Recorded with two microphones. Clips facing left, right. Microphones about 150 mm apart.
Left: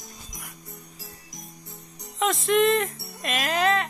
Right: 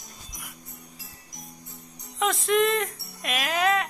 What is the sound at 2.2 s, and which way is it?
Music, centre (ahead or behind).